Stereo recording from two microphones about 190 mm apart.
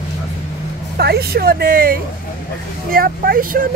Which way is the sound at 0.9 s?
55° right (ahead or behind).